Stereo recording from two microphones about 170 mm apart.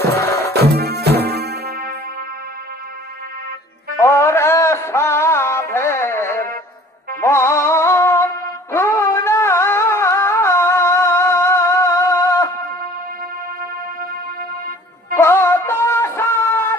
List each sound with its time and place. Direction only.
0.2 s music: 15° left (ahead or behind)
0.5 s music: 75° right (ahead or behind)
4.0 s a sound: 15° left (ahead or behind)
7.2 s music: 15° left (ahead or behind)
15.1 s music: 15° left (ahead or behind)